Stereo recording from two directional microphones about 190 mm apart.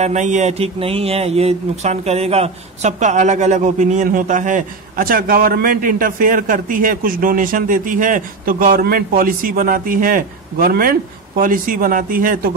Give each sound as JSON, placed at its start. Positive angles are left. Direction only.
{"t": 0.0, "sound": "a man's voice", "side_deg": -40}